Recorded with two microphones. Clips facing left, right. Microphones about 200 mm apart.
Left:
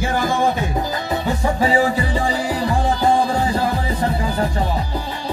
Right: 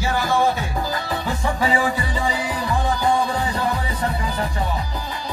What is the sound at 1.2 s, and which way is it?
Music, 30° left (ahead or behind).